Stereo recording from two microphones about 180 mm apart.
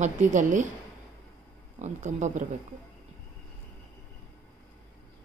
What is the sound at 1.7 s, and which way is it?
Speech, 40° right (ahead or behind).